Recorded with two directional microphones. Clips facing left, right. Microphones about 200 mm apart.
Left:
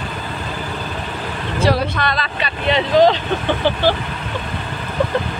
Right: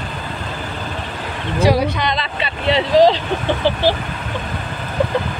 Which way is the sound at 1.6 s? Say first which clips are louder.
Right 2 dB; 15° right (ahead or behind).